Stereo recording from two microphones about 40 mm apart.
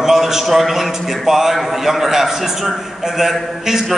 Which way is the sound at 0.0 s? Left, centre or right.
Centre.